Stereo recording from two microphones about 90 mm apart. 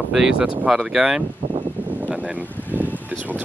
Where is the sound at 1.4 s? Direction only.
90° right.